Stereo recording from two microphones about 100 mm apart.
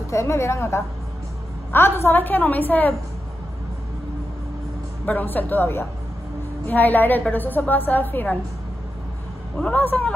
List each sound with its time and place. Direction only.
0.1 s a woman's voice: 25° left (ahead or behind)
5.0 s a woman's voice: 20° left (ahead or behind)
9.6 s a woman's voice: 15° left (ahead or behind)